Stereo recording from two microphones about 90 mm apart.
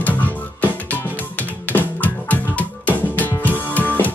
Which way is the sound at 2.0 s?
20° left (ahead or behind).